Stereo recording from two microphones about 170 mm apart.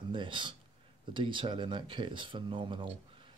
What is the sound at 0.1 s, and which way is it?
Speech, 30° right (ahead or behind).